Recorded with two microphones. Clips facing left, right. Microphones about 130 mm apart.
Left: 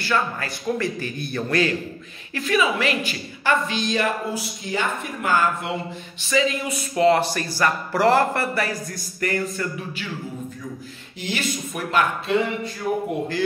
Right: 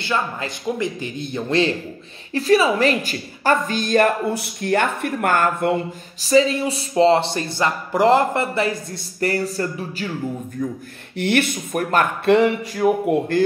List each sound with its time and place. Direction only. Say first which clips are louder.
0.0 s speech: even; 20° right (ahead or behind)
2.3 s a woman's voice: right 5 dB; 35° right (ahead or behind); by 5.8 s 50° right (ahead or behind)
6.1 s speech: right 6 dB; 35° right (ahead or behind)
10.6 s speech: right 8 dB; 55° right (ahead or behind)
12.3 s a sound: right 7 dB; 65° right (ahead or behind)
13.3 s a woman's voice: right 6 dB; 50° right (ahead or behind)